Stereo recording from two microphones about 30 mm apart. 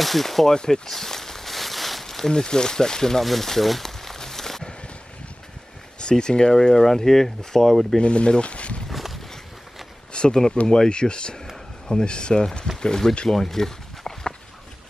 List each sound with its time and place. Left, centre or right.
0.0 s speech: centre
0.5 s speech: centre
0.9 s a sound: centre
2.2 s speech: left
3.3 s speech: centre
3.8 s a sound: centre
5.9 s speech: left; by 8.0 s centre
8.0 s speech: left
8.9 s walk: centre
10.3 s speech: centre
10.9 s speech: left
13.3 s a sound: centre